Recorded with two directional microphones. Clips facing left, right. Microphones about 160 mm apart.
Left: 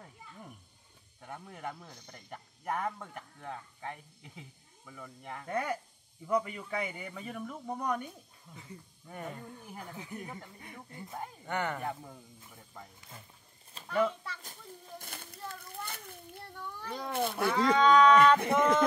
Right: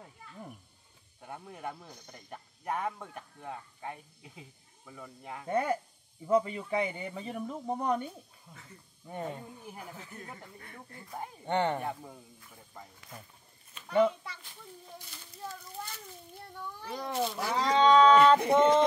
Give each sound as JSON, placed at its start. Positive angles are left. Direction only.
{"t": 1.2, "sound": "speech", "side_deg": -5}
{"t": 5.5, "sound": "speech", "side_deg": -25}
{"t": 9.4, "sound": "speech", "side_deg": -10}
{"t": 9.9, "sound": "speech", "side_deg": 15}
{"t": 11.4, "sound": "speech", "side_deg": -30}
{"t": 11.8, "sound": "speech", "side_deg": -5}
{"t": 13.8, "sound": "a sound", "side_deg": -15}
{"t": 14.4, "sound": "a sound", "side_deg": 45}
{"t": 16.8, "sound": "cat", "side_deg": -5}
{"t": 17.1, "sound": "speech", "side_deg": 55}
{"t": 17.6, "sound": "speech", "side_deg": -30}